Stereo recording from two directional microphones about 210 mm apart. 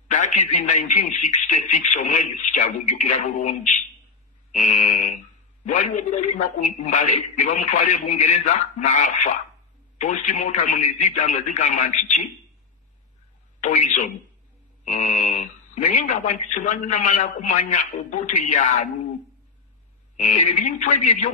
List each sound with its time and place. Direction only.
0.1 s speech: 35° left (ahead or behind)
13.6 s speech: 35° left (ahead or behind)
20.2 s speech: 35° left (ahead or behind)